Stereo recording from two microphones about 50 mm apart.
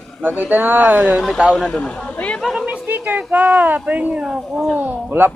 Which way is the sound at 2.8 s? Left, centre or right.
Right.